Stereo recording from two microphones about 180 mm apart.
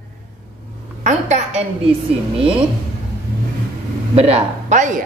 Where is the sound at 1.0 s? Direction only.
40° right (ahead or behind).